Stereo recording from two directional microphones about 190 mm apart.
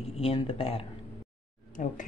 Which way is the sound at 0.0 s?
30° left (ahead or behind).